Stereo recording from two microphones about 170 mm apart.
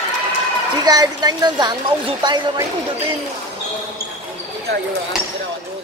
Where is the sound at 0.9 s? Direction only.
20° right (ahead or behind).